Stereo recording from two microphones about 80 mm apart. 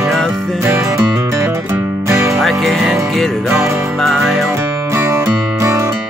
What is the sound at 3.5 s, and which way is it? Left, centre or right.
Speech, right.